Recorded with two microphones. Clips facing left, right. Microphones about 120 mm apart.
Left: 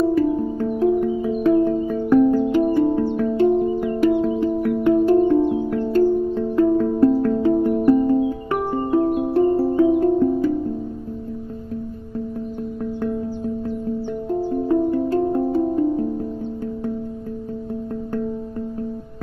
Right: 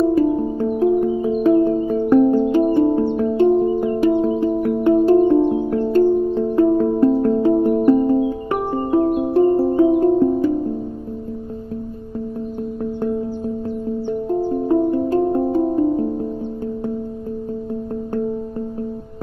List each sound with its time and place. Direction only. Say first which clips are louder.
0.1 s music: right 2 dB; 25° right (ahead or behind)
9.1 s music: right 2 dB; 15° right (ahead or behind)
9.4 s music: right 3 dB; 30° right (ahead or behind)
14.4 s music: right 1 dB; 30° right (ahead or behind)